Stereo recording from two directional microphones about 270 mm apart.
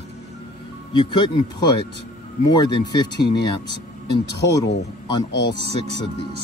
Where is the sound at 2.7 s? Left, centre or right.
Centre.